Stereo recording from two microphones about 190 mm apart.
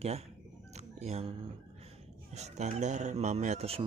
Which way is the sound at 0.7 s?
35° right (ahead or behind).